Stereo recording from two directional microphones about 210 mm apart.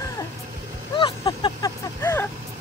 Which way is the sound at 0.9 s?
25° left (ahead or behind).